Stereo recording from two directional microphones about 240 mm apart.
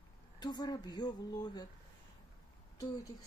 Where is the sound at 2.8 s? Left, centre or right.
Centre.